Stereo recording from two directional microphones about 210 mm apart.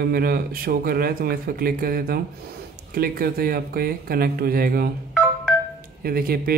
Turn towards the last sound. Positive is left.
turn(degrees=-45)  # may be behind; listen again after turning